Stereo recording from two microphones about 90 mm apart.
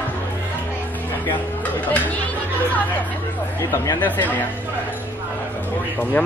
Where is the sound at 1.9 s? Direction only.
20° left (ahead or behind).